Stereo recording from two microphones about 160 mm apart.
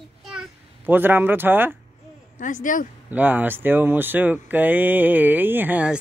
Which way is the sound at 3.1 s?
10° right (ahead or behind).